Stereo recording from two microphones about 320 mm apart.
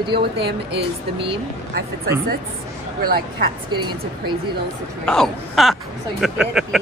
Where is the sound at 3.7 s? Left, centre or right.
Centre.